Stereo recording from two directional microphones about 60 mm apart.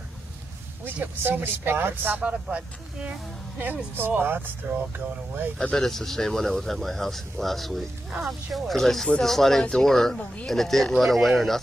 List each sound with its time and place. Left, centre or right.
1.0 s speech: right
2.4 s speech: centre
3.5 s speech: right
5.6 s speech: centre